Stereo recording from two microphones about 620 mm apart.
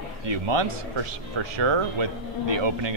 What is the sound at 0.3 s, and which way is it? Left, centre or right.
Speech, right.